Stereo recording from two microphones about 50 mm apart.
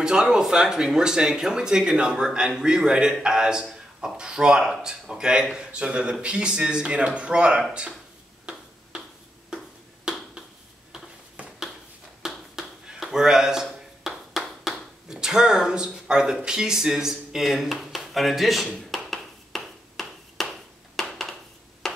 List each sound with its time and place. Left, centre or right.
0.0 s a man's voice: centre
8.5 s finger snapping: centre
12.2 s finger snapping: centre
13.7 s a sound: centre
15.0 s speech: centre
19.0 s a sound: centre
21.8 s finger snapping: centre